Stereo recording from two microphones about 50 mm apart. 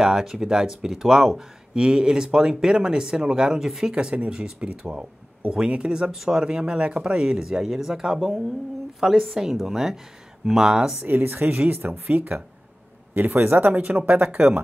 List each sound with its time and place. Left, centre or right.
0.0 s speech: centre
3.9 s a woman's voice: right
11.1 s speech: right